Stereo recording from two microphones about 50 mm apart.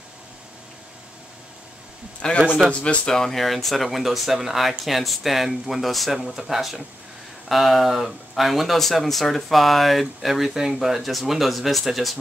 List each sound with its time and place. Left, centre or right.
2.2 s a man's voice: centre
3.1 s speech: centre